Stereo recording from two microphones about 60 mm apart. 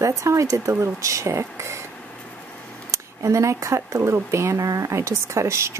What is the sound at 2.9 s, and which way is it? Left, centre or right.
Speech, right.